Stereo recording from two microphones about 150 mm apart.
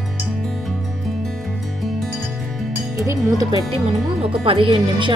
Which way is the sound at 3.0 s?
20° right (ahead or behind).